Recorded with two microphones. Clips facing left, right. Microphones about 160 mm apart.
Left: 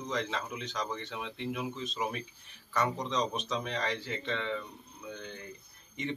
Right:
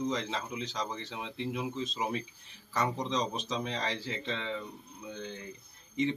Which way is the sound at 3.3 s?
25° right (ahead or behind).